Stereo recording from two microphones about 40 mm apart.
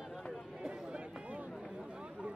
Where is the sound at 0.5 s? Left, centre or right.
Centre.